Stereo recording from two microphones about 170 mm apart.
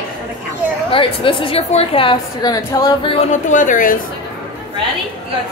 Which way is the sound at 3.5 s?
50° left (ahead or behind).